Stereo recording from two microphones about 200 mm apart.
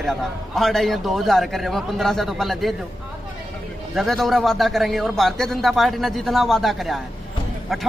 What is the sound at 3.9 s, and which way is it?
A man's voice, centre (ahead or behind).